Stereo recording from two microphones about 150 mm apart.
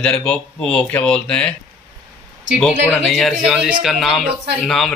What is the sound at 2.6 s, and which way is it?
Speech, 5° left (ahead or behind).